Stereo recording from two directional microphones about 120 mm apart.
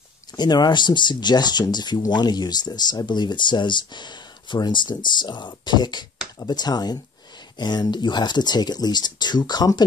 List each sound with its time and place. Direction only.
0.4 s speech: 35° left (ahead or behind)